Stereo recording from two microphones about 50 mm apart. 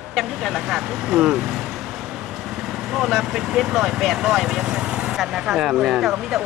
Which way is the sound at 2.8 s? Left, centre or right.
Centre.